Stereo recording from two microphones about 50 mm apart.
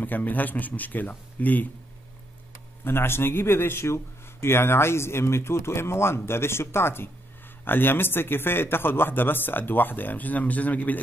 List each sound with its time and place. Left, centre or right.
0.0 s speech: left
2.8 s a man's voice: left